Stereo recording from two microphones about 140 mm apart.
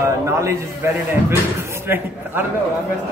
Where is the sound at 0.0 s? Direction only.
20° right (ahead or behind).